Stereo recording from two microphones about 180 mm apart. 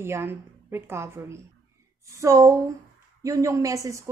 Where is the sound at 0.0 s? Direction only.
15° right (ahead or behind).